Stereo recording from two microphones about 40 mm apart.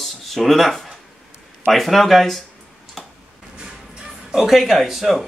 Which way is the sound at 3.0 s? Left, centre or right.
Centre.